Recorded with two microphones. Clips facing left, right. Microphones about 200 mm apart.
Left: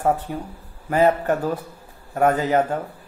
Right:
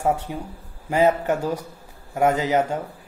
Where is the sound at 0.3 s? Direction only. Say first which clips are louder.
Left 2 dB; 15° right (ahead or behind).